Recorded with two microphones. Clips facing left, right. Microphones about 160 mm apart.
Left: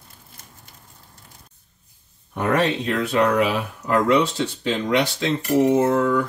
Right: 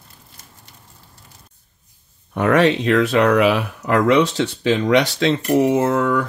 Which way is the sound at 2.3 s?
90° right.